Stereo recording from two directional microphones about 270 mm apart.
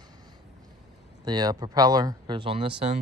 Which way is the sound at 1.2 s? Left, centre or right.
Centre.